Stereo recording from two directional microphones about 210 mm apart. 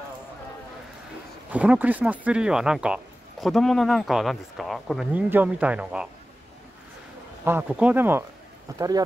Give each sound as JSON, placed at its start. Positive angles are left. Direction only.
{"t": 1.5, "sound": "speech", "side_deg": -5}
{"t": 7.4, "sound": "speech", "side_deg": -10}